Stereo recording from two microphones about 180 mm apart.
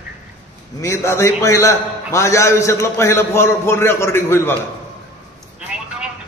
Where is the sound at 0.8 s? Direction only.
15° left (ahead or behind).